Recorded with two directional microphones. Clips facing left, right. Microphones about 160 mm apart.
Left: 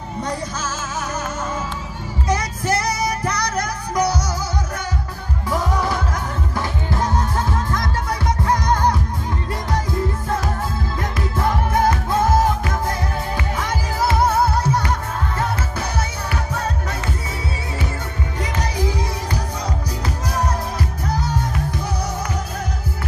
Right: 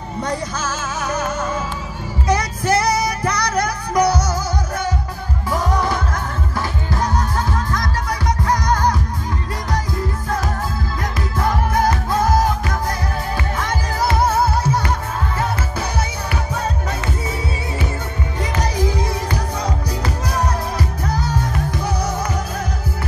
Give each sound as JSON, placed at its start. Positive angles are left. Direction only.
{"t": 0.2, "sound": "music", "side_deg": -65}
{"t": 5.8, "sound": "music", "side_deg": 5}
{"t": 6.5, "sound": "music", "side_deg": 25}
{"t": 11.0, "sound": "music", "side_deg": 25}
{"t": 13.6, "sound": "music", "side_deg": 5}
{"t": 19.6, "sound": "music", "side_deg": -70}
{"t": 21.8, "sound": "music", "side_deg": -90}